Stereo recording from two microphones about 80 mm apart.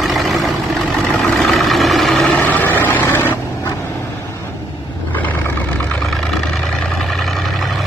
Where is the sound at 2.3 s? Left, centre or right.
Left.